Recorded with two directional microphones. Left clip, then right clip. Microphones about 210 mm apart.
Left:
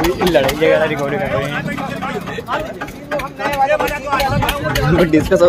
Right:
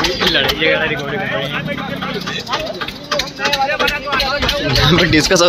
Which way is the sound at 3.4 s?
20° left (ahead or behind).